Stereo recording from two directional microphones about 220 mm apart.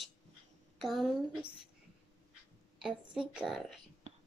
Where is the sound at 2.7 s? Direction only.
5° right (ahead or behind).